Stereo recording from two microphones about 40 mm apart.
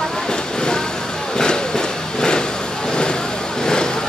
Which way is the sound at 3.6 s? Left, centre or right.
Centre.